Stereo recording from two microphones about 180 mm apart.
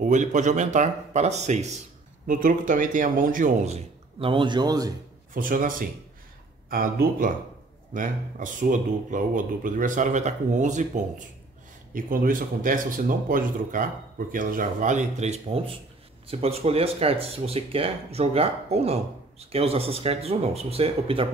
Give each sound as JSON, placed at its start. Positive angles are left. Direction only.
{"t": 0.0, "sound": "speech", "side_deg": -45}
{"t": 5.3, "sound": "speech", "side_deg": -50}